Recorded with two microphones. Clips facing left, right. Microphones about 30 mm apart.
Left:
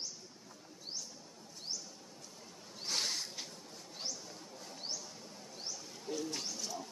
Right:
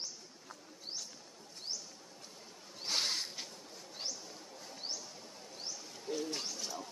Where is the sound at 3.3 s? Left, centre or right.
Centre.